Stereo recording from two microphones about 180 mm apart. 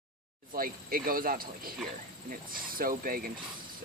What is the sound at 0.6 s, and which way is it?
Speech, 55° right (ahead or behind).